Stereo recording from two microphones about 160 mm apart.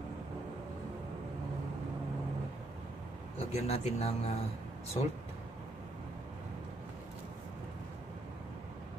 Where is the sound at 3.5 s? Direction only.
40° left (ahead or behind).